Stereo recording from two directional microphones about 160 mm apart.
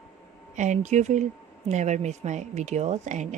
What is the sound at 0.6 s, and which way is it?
Speech, 50° right (ahead or behind).